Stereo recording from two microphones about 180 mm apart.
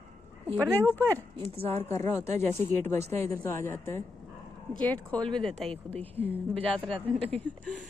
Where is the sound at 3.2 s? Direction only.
15° left (ahead or behind).